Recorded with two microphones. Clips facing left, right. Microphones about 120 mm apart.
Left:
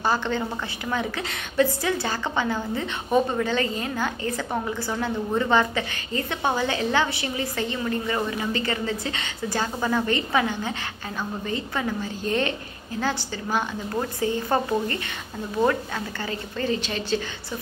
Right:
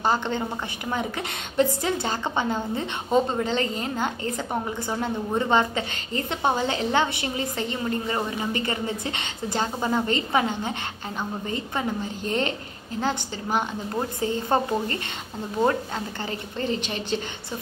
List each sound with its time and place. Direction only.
0.0 s a woman's voice: 20° right (ahead or behind)